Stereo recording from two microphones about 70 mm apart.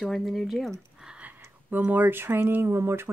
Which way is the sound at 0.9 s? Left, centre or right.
Centre.